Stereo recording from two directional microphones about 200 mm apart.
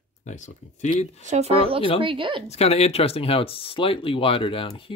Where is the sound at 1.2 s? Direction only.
35° right (ahead or behind).